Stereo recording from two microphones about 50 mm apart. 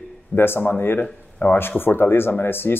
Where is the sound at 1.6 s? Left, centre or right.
Left.